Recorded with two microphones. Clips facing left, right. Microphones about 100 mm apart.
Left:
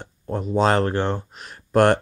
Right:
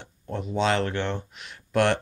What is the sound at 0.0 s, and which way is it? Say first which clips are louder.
Speech: left 5 dB; 45° left (ahead or behind).